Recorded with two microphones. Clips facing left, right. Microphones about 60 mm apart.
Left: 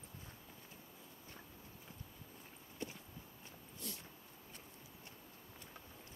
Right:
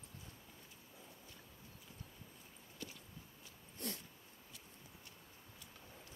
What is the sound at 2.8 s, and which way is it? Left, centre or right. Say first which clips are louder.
Walk: left 5 dB; left.